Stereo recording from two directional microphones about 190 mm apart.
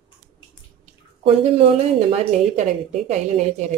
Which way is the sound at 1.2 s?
30° right (ahead or behind).